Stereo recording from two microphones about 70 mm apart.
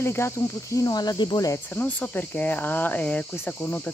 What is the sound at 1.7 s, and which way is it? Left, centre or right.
Speech, left.